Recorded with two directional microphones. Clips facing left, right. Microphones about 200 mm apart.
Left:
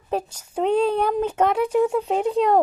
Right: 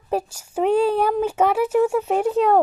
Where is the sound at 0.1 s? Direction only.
10° right (ahead or behind).